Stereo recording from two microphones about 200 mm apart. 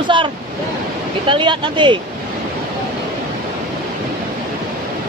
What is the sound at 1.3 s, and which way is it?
Speech, 25° right (ahead or behind).